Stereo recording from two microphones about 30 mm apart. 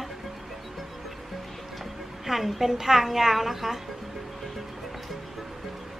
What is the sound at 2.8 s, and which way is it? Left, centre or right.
Speech, centre.